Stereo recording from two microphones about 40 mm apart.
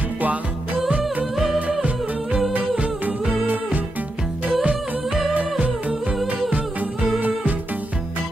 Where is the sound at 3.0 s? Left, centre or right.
Right.